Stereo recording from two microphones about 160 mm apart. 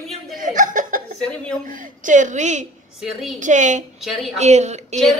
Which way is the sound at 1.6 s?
55° right (ahead or behind).